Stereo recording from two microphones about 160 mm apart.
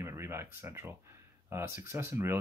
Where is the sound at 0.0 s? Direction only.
15° right (ahead or behind).